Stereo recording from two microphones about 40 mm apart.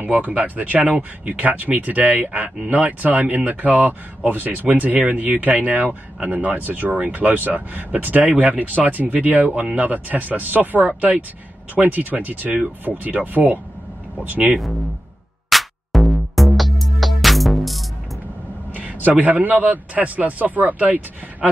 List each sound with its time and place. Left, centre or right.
0.0 s a man's voice: right
15.5 s music: centre
18.7 s a man's voice: right